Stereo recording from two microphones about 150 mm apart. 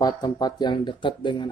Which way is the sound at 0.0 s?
25° left (ahead or behind).